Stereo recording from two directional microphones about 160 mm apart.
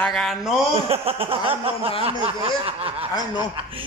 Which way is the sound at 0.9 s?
35° right (ahead or behind).